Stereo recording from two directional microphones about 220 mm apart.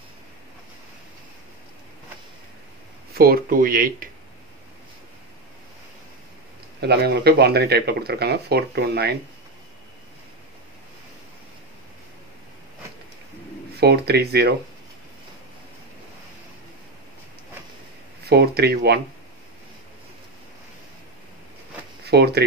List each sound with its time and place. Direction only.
3.2 s speech: 40° right (ahead or behind)
6.8 s speech: 45° right (ahead or behind)
13.7 s speech: 45° right (ahead or behind)
18.2 s speech: 45° right (ahead or behind)
22.1 s speech: 50° right (ahead or behind)